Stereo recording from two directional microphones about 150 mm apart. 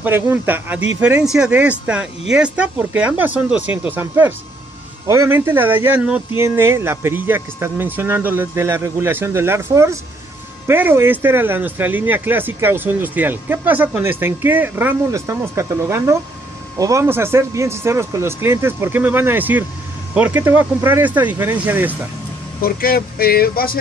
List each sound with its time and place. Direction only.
0.0 s speech: 15° right (ahead or behind)
22.6 s speech: 75° left (ahead or behind)